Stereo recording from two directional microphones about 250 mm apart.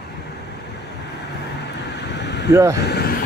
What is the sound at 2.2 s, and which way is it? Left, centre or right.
Vehicle, left.